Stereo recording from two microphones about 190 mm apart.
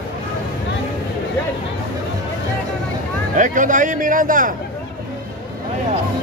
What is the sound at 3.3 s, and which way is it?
Speech, 40° right (ahead or behind).